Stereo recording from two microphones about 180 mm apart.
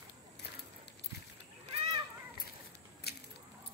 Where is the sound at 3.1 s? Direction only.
60° left (ahead or behind).